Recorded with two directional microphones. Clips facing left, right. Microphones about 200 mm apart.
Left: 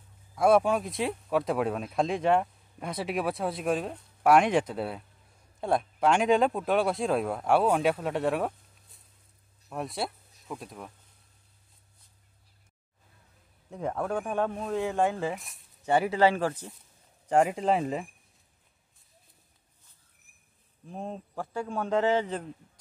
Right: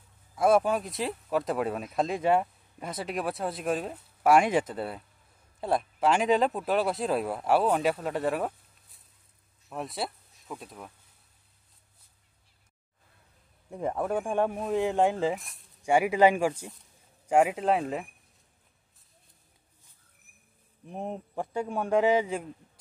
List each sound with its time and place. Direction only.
0.4 s speech: centre (ahead or behind)
7.6 s speech: 5° left (ahead or behind)
9.7 s speech: centre (ahead or behind)
13.7 s a man's voice: 10° right (ahead or behind)
15.3 s speech: centre (ahead or behind)
15.8 s a man's voice: 10° right (ahead or behind)
20.8 s a man's voice: 20° right (ahead or behind)